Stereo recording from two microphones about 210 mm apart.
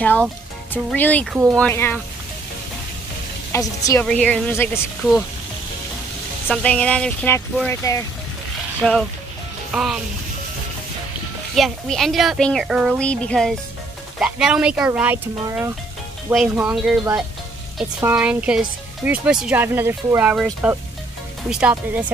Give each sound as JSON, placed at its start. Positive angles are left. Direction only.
{"t": 0.0, "sound": "speech", "side_deg": 5}
{"t": 3.5, "sound": "speech", "side_deg": 15}
{"t": 6.4, "sound": "speech", "side_deg": 5}
{"t": 8.8, "sound": "speech", "side_deg": 5}
{"t": 11.5, "sound": "speech", "side_deg": 0}
{"t": 21.5, "sound": "speech", "side_deg": -5}